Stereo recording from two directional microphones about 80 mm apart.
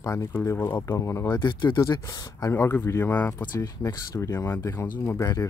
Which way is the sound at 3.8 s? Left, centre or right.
Left.